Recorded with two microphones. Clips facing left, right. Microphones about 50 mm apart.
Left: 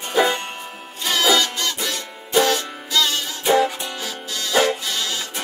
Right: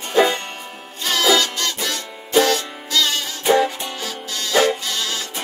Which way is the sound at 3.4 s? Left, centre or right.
Centre.